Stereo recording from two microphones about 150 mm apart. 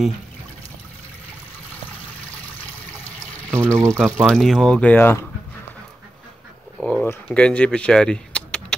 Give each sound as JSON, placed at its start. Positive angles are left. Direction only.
{"t": 3.0, "sound": "water", "side_deg": 10}
{"t": 3.7, "sound": "speech", "side_deg": -20}
{"t": 4.2, "sound": "speech", "side_deg": 0}
{"t": 6.8, "sound": "a sound", "side_deg": 5}
{"t": 7.2, "sound": "speech", "side_deg": 10}